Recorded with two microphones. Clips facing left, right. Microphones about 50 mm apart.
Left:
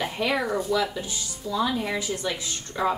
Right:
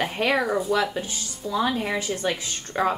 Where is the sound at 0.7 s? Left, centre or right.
Right.